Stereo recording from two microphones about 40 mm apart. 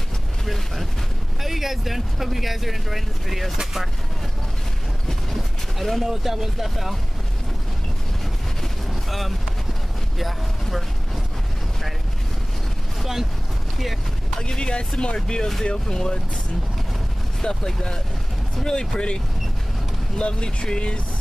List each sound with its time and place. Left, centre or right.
1.4 s speech: centre
5.3 s a sound: centre
6.0 s speech: centre
10.1 s speech: centre
13.0 s speech: centre
14.4 s speech: left
17.4 s speech: centre
18.6 s speech: centre
18.9 s speech: left